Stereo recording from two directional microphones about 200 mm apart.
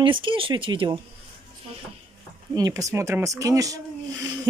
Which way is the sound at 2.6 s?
15° right (ahead or behind).